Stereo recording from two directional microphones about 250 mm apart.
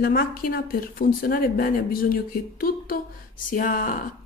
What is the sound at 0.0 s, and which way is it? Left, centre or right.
Speech, left.